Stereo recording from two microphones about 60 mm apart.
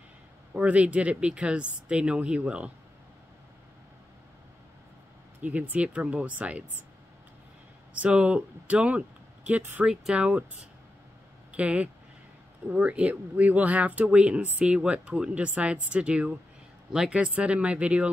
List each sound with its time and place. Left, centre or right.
0.5 s speech: right
5.4 s speech: right
7.9 s speech: right
9.6 s speech: right
10.1 s speech: right
11.5 s speech: right